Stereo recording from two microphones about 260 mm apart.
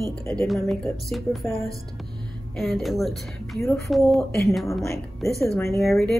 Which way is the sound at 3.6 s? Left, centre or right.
Centre.